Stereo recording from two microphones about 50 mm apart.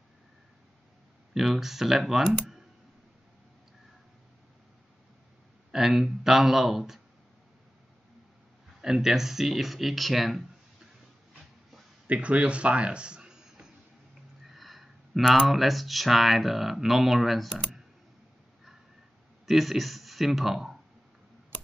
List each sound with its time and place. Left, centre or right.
1.3 s speech: centre
5.7 s speech: centre
8.8 s speech: centre
12.1 s speech: right
14.5 s speech: centre
19.4 s speech: centre